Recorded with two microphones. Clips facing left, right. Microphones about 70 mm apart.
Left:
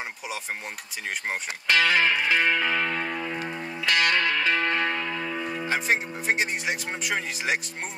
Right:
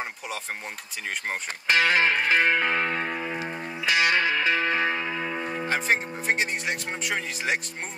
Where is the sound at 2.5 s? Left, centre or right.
Right; by 4.4 s centre.